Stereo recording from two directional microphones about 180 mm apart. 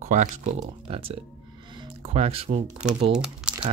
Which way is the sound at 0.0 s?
45° right (ahead or behind).